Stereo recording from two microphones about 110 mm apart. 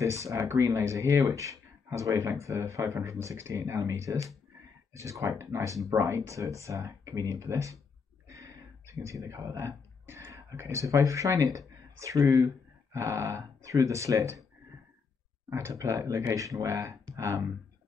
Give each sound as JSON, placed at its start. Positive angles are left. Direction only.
{"t": 0.0, "sound": "speech", "side_deg": -30}
{"t": 5.4, "sound": "speech", "side_deg": -30}
{"t": 15.5, "sound": "speech", "side_deg": -25}
{"t": 17.0, "sound": "a sound", "side_deg": -30}